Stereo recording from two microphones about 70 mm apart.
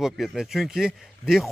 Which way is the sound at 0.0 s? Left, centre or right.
Centre.